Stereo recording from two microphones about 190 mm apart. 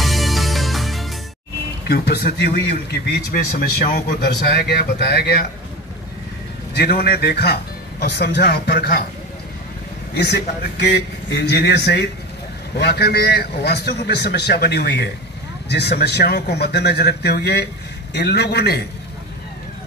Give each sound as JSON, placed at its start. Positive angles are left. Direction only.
{"t": 0.0, "sound": "music", "side_deg": 0}
{"t": 1.9, "sound": "a man's voice", "side_deg": 60}
{"t": 6.7, "sound": "a man's voice", "side_deg": 55}
{"t": 10.1, "sound": "a man's voice", "side_deg": 60}